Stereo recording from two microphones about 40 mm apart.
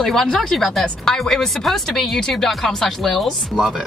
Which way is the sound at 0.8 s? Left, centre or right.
Centre.